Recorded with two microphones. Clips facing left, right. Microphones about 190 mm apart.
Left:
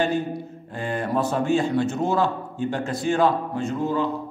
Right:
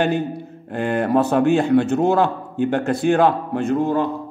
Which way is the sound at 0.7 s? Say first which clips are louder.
Right 7 dB; 60° right (ahead or behind).